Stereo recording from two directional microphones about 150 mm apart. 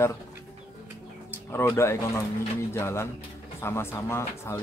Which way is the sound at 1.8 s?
20° left (ahead or behind).